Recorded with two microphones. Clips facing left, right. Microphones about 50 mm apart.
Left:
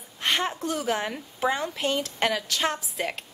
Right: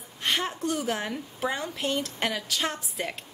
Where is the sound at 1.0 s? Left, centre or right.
Centre.